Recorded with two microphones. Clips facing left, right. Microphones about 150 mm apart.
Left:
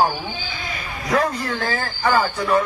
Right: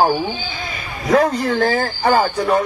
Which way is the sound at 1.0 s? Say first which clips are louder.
Right 6 dB; 45° right (ahead or behind).